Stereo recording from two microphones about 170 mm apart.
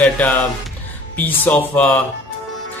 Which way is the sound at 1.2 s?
10° left (ahead or behind).